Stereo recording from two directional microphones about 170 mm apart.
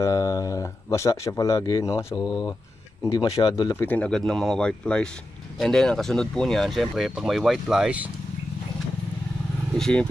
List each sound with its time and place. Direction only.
0.0 s speech: 20° left (ahead or behind)
3.7 s speech: 10° left (ahead or behind); by 8.1 s 5° right (ahead or behind)
9.8 s speech: 5° left (ahead or behind)